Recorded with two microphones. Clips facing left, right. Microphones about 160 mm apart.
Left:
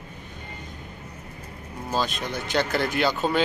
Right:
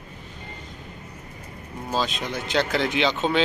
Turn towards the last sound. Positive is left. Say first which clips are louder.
# right 1 dB
turn(degrees=5)  # may be behind; listen again after turning